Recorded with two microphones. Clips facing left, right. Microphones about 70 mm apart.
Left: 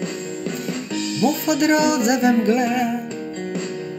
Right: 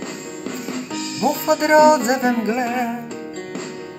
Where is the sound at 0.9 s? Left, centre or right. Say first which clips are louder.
Left 1 dB; right.